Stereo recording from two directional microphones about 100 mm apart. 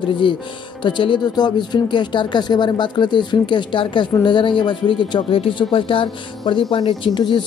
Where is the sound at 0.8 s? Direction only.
55° left (ahead or behind).